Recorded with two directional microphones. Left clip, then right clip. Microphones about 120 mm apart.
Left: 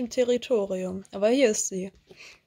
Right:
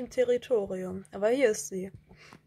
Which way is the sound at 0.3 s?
30° left (ahead or behind).